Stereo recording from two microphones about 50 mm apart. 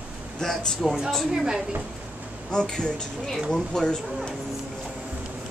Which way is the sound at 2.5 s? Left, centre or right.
Centre.